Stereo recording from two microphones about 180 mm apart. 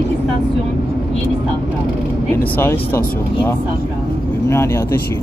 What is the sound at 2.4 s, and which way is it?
Speech, 10° left (ahead or behind).